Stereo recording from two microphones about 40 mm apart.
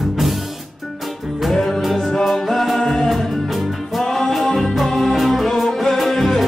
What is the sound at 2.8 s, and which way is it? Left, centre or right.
Music, centre.